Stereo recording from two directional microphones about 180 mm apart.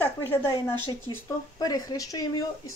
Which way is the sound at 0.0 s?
10° left (ahead or behind).